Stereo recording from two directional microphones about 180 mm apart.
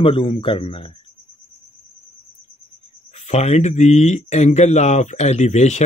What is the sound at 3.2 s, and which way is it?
Speech, 35° left (ahead or behind).